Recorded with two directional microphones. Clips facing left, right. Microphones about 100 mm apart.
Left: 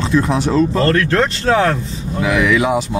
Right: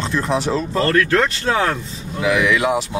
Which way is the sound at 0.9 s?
30° left (ahead or behind).